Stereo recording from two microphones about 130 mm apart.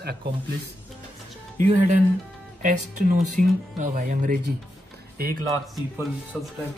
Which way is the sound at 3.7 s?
80° right.